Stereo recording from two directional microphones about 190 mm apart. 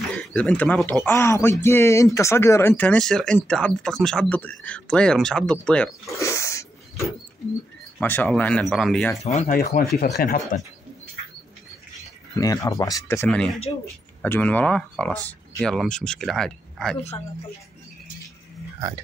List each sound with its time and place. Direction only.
0.1 s speech: 5° left (ahead or behind)
6.1 s dog: 15° left (ahead or behind)
8.0 s speech: 10° left (ahead or behind)
9.2 s speech: 35° left (ahead or behind)
9.6 s speech: 55° left (ahead or behind)
12.4 s speech: 20° left (ahead or behind)